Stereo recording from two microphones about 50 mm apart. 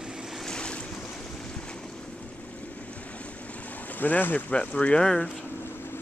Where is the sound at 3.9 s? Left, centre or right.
Left.